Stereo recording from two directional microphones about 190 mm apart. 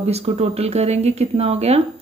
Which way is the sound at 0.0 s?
35° right (ahead or behind).